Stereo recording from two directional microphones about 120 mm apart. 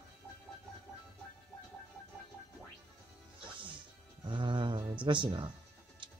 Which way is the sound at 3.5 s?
45° right (ahead or behind).